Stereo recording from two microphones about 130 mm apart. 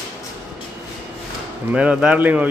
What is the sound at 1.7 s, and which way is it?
Speech, 10° right (ahead or behind).